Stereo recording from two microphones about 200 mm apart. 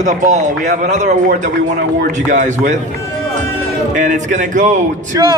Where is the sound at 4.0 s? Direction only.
40° right (ahead or behind).